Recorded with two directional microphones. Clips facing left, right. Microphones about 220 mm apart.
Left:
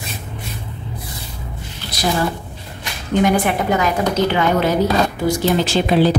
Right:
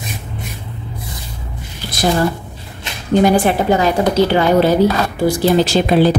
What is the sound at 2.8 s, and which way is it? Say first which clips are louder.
A woman's voice: right 4 dB; 30° right (ahead or behind).